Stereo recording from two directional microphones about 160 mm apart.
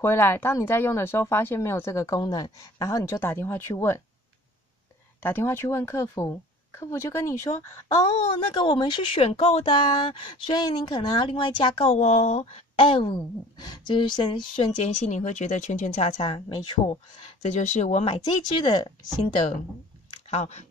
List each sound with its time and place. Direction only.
0.0 s speech: 15° left (ahead or behind)
5.2 s speech: 15° left (ahead or behind)
8.1 s speech: 35° left (ahead or behind)
14.8 s speech: 50° left (ahead or behind); by 17.0 s 30° left (ahead or behind)
17.4 s speech: 45° left (ahead or behind); by 18.9 s 25° left (ahead or behind)
20.2 s speech: 45° left (ahead or behind)